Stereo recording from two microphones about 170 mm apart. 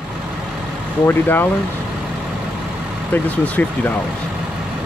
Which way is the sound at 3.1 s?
10° left (ahead or behind).